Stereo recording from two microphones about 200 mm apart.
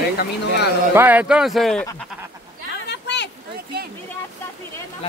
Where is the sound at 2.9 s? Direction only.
60° left (ahead or behind).